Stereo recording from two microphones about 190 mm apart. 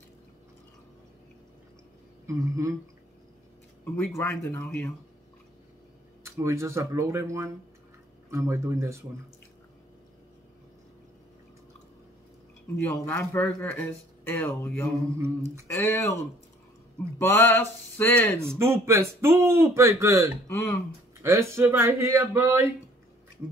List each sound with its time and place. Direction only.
2.2 s speech: 15° right (ahead or behind)
3.8 s a man's voice: 5° left (ahead or behind)
6.2 s speech: 15° right (ahead or behind)
12.7 s speech: 5° left (ahead or behind)
15.2 s speech: 15° right (ahead or behind)
15.6 s speech: 15° left (ahead or behind)
17.2 s speech: 10° left (ahead or behind)
18.6 s speech: 15° right (ahead or behind)
20.4 s speech: 15° left (ahead or behind)
21.2 s speech: 15° right (ahead or behind)